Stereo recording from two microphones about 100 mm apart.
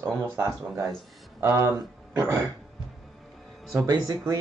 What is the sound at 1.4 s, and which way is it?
Speech, 30° right (ahead or behind).